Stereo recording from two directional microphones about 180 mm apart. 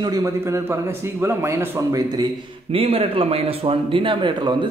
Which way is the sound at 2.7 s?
30° right (ahead or behind).